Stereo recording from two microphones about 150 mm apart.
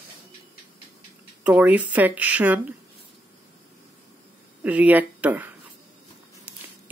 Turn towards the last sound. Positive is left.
turn(degrees=-10)  # may be behind; listen again after turning